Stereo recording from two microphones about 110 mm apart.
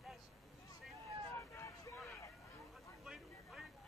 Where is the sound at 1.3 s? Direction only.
20° left (ahead or behind).